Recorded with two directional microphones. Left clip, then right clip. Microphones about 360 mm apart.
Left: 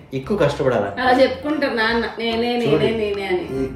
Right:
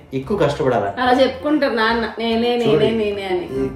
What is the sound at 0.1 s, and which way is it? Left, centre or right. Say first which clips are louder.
A woman's voice: right 1 dB; centre.